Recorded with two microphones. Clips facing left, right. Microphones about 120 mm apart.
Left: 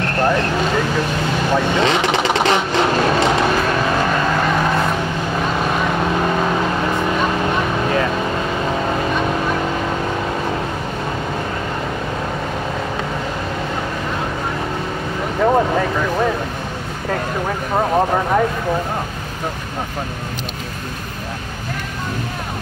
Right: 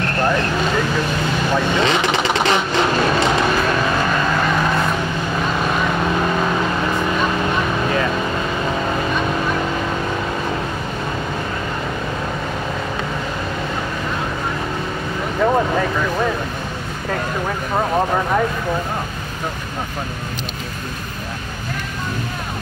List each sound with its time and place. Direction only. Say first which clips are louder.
0.0 s vehicle: left 1 dB; 45° left (ahead or behind)
15.3 s vehicle: left 2 dB; 30° left (ahead or behind)